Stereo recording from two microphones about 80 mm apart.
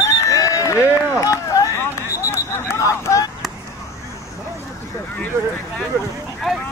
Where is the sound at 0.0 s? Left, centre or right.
Left.